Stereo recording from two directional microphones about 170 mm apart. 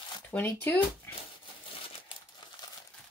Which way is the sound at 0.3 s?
10° left (ahead or behind).